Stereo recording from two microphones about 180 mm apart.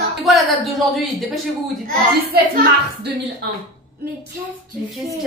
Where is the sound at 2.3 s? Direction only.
65° right (ahead or behind).